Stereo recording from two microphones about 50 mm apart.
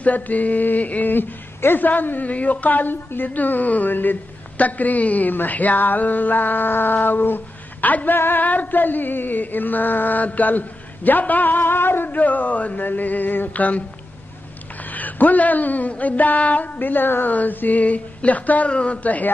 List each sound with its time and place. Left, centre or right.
0.0 s a woman's voice: left
18.7 s a woman's voice: left
19.0 s a woman's voice: left